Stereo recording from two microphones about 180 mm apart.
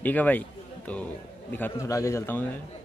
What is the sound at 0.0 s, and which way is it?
A man's voice, 10° left (ahead or behind).